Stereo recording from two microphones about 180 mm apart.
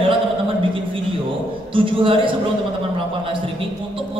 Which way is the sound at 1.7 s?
30° right (ahead or behind).